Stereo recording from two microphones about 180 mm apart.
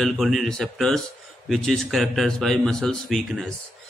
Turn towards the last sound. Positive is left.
turn(degrees=0)  # may be behind; listen again after turning